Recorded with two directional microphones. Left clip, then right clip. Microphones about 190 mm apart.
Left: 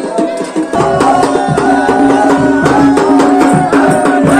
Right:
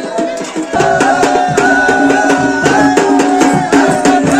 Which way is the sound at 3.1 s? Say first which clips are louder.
Left 2 dB; 35° right (ahead or behind).